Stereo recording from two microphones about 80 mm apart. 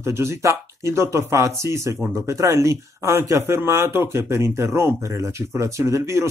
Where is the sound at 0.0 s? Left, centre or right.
Right.